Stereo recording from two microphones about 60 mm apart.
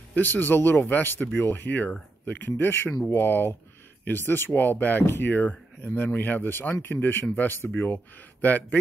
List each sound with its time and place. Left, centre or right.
0.1 s speech: left
2.5 s speech: left